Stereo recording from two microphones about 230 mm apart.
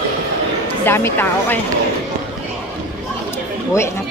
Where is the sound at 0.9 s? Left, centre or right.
Centre.